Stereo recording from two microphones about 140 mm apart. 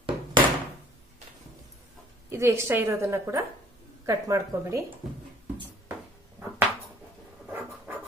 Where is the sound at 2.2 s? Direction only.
20° right (ahead or behind).